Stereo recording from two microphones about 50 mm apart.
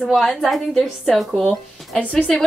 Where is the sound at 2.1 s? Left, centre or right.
Centre.